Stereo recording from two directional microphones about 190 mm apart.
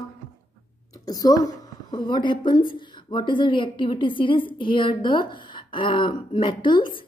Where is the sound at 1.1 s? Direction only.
20° left (ahead or behind).